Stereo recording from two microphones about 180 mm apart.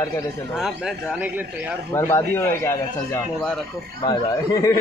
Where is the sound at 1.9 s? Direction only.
15° left (ahead or behind).